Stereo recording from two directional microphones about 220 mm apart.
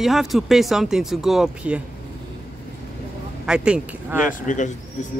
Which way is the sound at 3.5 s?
5° right (ahead or behind).